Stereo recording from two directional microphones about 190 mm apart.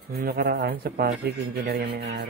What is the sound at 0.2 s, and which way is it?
Speech, 55° right (ahead or behind).